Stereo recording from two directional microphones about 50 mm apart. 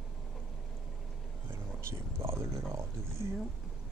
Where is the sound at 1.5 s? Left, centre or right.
Right.